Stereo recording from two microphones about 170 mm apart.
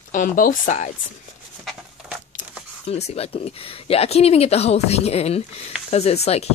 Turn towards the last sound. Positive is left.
turn(degrees=40)  # may be behind; listen again after turning